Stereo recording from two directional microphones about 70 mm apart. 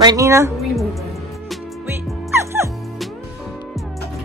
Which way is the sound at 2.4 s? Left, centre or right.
Right.